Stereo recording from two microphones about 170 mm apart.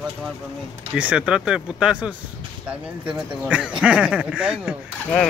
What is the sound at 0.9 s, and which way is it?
Speech, 5° right (ahead or behind).